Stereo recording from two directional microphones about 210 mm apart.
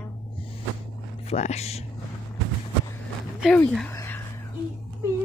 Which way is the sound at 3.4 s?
5° left (ahead or behind).